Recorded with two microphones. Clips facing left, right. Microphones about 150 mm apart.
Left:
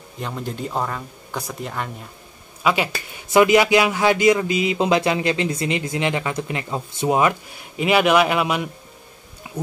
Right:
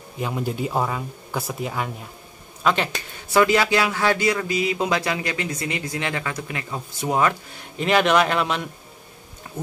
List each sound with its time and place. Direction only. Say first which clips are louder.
0.2 s speech: right 3 dB; 5° right (ahead or behind)
2.6 s speech: left 1 dB; 10° left (ahead or behind)